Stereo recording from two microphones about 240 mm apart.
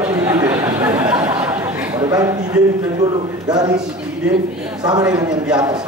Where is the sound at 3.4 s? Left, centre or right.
Centre.